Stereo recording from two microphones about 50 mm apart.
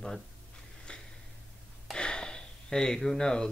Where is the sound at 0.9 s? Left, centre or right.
Left.